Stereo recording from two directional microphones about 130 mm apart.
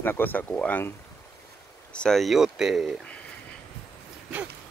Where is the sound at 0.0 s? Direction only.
15° left (ahead or behind).